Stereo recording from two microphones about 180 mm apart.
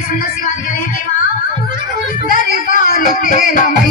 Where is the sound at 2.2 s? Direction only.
50° left (ahead or behind).